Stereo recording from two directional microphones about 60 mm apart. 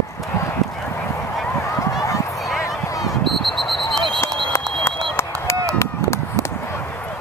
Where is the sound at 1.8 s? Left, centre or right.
Left.